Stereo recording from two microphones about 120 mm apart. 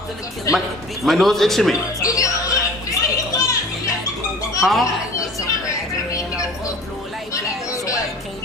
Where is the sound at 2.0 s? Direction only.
30° left (ahead or behind).